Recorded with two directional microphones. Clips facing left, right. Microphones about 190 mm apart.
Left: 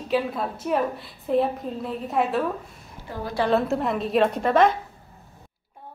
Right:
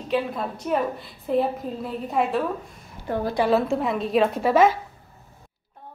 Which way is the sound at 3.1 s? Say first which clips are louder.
Right 8 dB; 55° right (ahead or behind).